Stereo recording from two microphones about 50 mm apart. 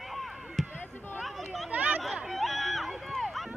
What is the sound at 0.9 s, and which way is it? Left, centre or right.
Basketball bounce, left.